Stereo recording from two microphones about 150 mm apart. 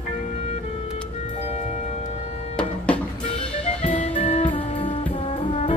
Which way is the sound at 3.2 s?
50° left (ahead or behind).